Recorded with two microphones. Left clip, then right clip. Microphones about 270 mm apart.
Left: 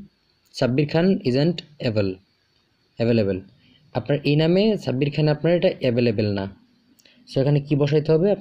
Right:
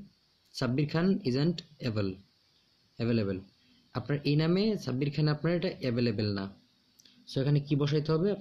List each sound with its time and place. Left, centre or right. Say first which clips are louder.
0.6 s speech: left 11 dB; centre